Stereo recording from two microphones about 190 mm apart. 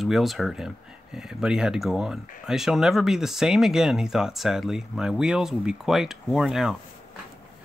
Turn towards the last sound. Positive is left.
turn(degrees=0)  # may be behind; listen again after turning